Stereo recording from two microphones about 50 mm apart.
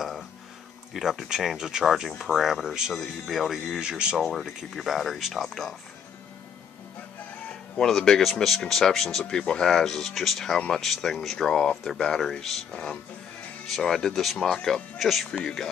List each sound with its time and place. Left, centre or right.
0.9 s speech: centre
3.8 s speech: centre
4.2 s speech: centre
7.4 s speech: centre
9.7 s speech: centre